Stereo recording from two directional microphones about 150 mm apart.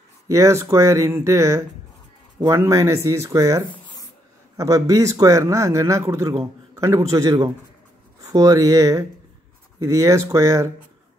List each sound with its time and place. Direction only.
0.3 s a man's voice: 20° right (ahead or behind)